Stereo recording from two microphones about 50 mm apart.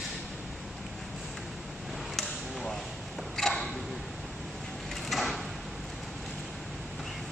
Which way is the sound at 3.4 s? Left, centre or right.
Centre.